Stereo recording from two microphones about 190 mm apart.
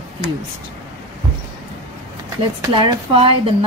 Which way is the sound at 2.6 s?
25° right (ahead or behind).